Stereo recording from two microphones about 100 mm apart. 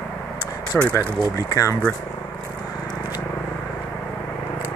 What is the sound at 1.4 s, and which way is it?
Speech, 35° left (ahead or behind).